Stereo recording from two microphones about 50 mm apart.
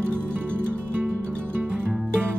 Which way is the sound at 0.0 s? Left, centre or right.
Left.